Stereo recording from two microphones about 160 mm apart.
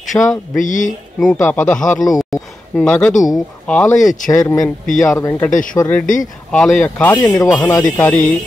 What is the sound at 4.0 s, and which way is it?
Speech, 55° left (ahead or behind).